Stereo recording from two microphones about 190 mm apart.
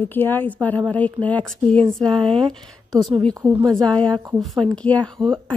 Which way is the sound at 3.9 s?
5° left (ahead or behind).